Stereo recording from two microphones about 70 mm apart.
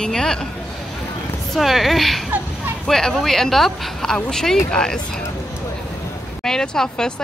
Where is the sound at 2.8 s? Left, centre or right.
Centre.